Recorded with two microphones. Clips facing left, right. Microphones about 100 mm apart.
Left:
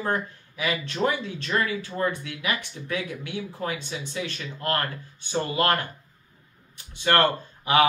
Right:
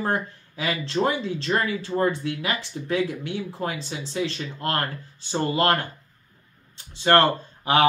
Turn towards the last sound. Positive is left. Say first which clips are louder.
# right 1 dB
turn(degrees=-30)  # may be behind; listen again after turning